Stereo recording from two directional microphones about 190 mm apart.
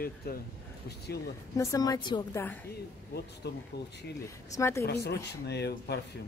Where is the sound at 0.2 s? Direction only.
55° left (ahead or behind).